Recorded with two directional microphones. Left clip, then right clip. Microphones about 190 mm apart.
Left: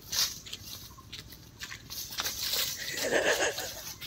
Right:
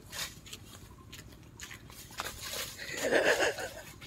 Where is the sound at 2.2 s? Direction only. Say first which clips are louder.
Left 7 dB; 5° left (ahead or behind).